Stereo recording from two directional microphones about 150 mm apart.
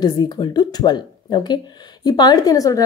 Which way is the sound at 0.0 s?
30° left (ahead or behind).